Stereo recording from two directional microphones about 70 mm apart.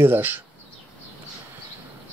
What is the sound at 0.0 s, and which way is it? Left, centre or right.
Speech, right.